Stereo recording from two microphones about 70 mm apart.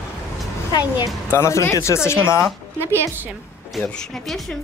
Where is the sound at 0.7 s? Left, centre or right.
Left.